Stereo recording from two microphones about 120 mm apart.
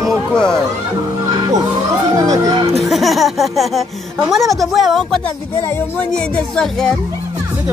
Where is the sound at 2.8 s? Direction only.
Centre (ahead or behind).